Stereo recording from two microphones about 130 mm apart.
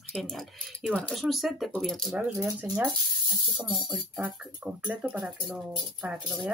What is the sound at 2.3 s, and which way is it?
Speech, 20° right (ahead or behind).